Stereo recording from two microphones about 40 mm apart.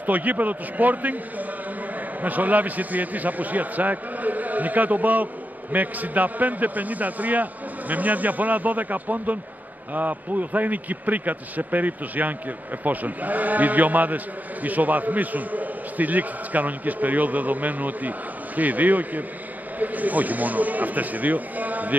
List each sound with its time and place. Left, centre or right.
0.0 s speech: right